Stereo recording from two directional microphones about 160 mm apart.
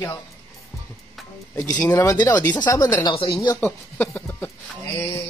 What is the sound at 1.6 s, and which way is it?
Speech, 25° left (ahead or behind).